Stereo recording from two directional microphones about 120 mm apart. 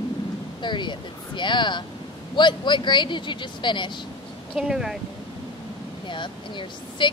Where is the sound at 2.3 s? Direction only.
40° left (ahead or behind).